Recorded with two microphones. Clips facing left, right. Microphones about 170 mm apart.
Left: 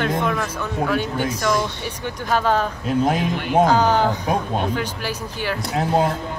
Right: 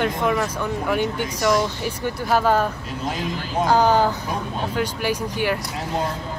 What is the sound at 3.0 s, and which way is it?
Speech, 65° left (ahead or behind).